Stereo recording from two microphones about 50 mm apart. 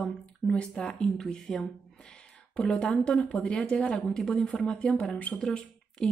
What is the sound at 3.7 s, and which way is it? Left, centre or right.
Speech, left.